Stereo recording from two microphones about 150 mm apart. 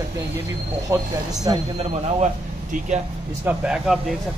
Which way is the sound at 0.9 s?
25° right (ahead or behind).